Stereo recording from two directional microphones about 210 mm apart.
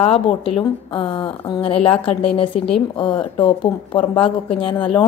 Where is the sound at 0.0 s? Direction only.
25° left (ahead or behind).